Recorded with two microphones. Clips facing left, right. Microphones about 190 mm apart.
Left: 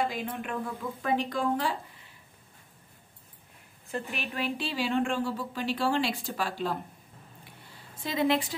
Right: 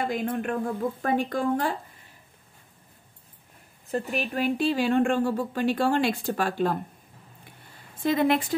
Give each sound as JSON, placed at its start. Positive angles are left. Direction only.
{"t": 0.0, "sound": "a woman's voice", "side_deg": -50}
{"t": 3.9, "sound": "a woman's voice", "side_deg": -40}
{"t": 8.0, "sound": "a woman's voice", "side_deg": -55}